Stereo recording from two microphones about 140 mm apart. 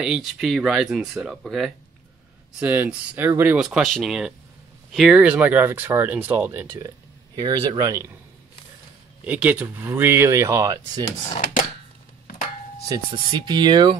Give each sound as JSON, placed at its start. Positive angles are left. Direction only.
{"t": 0.0, "sound": "speech", "side_deg": -5}
{"t": 2.6, "sound": "speech", "side_deg": -15}
{"t": 3.5, "sound": "speech", "side_deg": -5}
{"t": 7.3, "sound": "speech", "side_deg": -25}
{"t": 9.2, "sound": "speech", "side_deg": -10}
{"t": 11.2, "sound": "speech", "side_deg": 50}
{"t": 12.8, "sound": "speech", "side_deg": -30}